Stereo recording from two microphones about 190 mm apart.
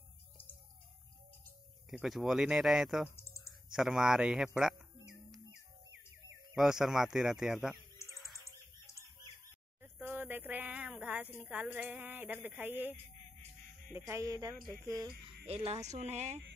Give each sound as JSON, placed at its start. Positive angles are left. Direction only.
{"t": 1.9, "sound": "speech", "side_deg": 0}
{"t": 6.5, "sound": "speech", "side_deg": 0}
{"t": 9.8, "sound": "a sound", "side_deg": -10}
{"t": 11.3, "sound": "a woman's voice", "side_deg": -5}
{"t": 13.9, "sound": "a woman's voice", "side_deg": -15}
{"t": 15.4, "sound": "speech", "side_deg": -35}